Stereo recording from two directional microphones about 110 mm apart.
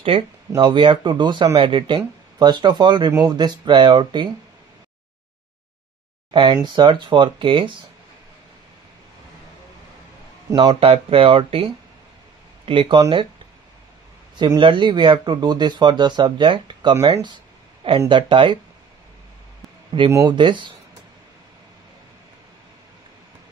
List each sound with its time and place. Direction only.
0.6 s speech: 50° right (ahead or behind)
6.3 s speech: 45° right (ahead or behind)
10.5 s speech: 40° right (ahead or behind)
10.8 s speech: 60° right (ahead or behind)
14.6 s speech: 45° right (ahead or behind)
19.9 s speech: 40° right (ahead or behind)